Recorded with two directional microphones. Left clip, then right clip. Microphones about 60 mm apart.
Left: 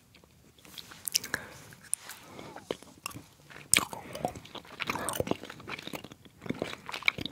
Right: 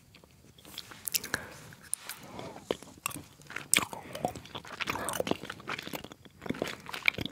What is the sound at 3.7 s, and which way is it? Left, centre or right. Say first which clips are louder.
Chewing: left 1 dB; centre.